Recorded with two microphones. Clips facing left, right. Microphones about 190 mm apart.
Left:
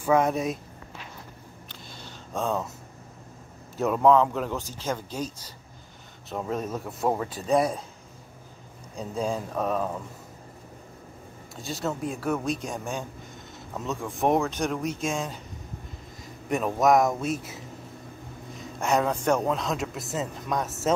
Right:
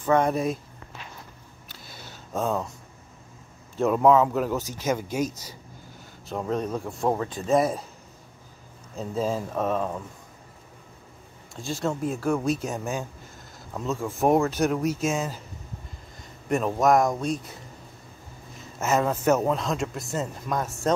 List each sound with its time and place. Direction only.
0.0 s a man's voice: 5° left (ahead or behind)
1.7 s a sound: 10° right (ahead or behind)
3.7 s a man's voice: centre (ahead or behind)
6.2 s a man's voice: centre (ahead or behind)
8.9 s a man's voice: centre (ahead or behind)
11.5 s a man's voice: centre (ahead or behind)
16.4 s a man's voice: centre (ahead or behind)